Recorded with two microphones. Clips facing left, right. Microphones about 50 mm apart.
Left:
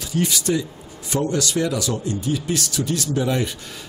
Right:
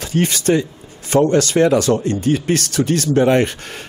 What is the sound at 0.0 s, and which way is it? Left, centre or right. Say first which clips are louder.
Speech: right 5 dB; right.